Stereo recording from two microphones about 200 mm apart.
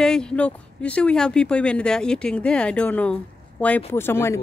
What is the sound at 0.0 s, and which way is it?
Speech, 5° left (ahead or behind).